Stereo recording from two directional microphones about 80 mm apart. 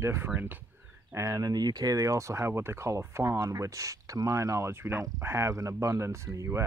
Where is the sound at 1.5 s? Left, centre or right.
Right.